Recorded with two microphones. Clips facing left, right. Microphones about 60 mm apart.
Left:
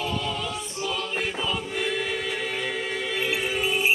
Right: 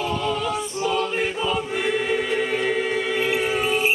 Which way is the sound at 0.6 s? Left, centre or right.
Right.